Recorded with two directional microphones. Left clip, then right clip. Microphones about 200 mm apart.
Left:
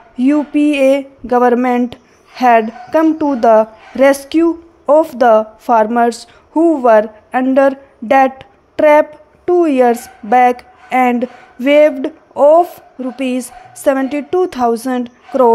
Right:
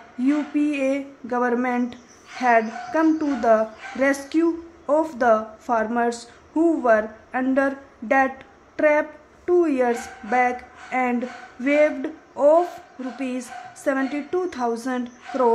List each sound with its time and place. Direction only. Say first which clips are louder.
0.2 s speech: left 9 dB; 35° left (ahead or behind)